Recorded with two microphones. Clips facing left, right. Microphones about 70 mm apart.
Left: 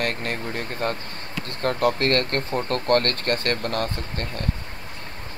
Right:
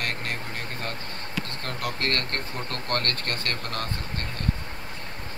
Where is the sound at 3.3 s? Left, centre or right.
Left.